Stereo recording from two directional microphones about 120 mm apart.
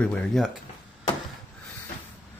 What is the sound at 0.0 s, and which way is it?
Speech, 5° left (ahead or behind).